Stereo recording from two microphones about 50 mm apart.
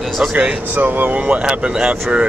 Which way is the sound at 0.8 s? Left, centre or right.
Right.